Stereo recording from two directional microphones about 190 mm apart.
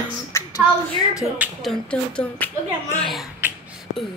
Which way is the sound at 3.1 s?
Centre (ahead or behind).